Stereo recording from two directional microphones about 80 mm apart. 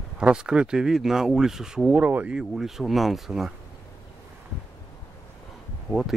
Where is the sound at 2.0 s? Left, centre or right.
Centre.